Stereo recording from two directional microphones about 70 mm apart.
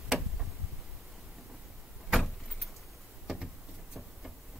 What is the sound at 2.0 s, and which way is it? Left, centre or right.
Vehicle, centre.